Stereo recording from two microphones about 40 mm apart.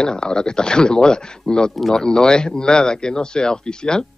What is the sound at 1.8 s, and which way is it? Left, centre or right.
Speech, centre.